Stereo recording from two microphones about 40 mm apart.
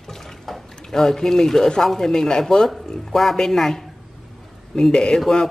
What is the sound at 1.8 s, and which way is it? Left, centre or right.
Speech, centre.